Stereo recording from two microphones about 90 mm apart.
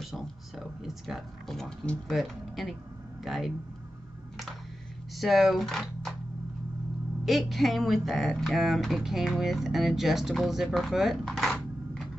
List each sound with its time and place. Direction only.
0.0 s speech: centre (ahead or behind)
5.1 s speech: centre (ahead or behind)
7.2 s speech: centre (ahead or behind)